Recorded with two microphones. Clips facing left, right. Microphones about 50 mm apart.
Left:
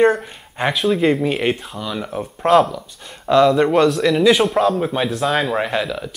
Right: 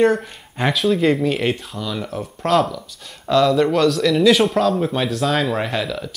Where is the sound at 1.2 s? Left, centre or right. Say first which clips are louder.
Left 1 dB; centre.